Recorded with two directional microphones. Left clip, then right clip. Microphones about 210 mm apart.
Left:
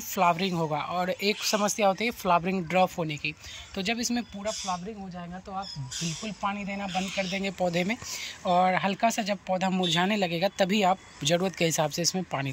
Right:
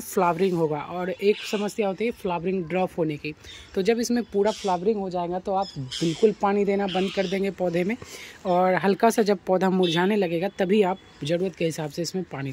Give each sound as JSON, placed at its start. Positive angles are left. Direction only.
{"t": 0.1, "sound": "speech", "side_deg": -20}